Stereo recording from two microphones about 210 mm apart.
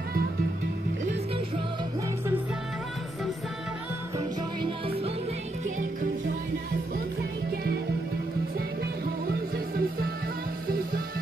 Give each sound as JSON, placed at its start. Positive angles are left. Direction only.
{"t": 4.6, "sound": "music", "side_deg": -25}
{"t": 8.5, "sound": "music", "side_deg": -45}